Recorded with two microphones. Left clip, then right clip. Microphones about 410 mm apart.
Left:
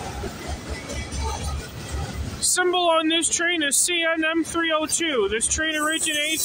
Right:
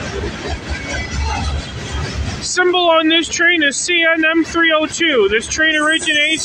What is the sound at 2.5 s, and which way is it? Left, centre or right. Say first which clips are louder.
Speech: right 7 dB; left.